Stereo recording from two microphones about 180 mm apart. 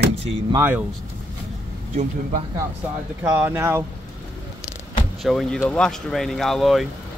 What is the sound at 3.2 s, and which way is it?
Speech, 10° right (ahead or behind).